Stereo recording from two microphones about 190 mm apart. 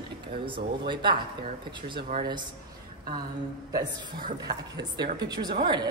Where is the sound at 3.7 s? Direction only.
20° right (ahead or behind).